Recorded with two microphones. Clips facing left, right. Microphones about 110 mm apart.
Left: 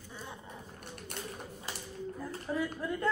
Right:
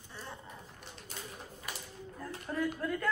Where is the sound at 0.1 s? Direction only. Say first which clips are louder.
Left 1 dB; 15° left (ahead or behind).